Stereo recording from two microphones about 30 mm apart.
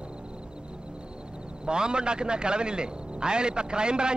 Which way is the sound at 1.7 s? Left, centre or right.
Right.